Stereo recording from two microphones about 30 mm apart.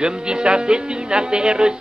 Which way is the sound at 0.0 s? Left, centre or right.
Right.